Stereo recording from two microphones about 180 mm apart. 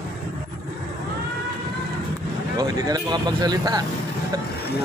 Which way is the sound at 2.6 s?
20° right (ahead or behind).